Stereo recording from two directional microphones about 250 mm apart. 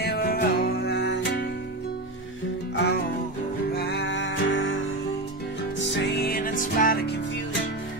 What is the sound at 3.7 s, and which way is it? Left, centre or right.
Music, left.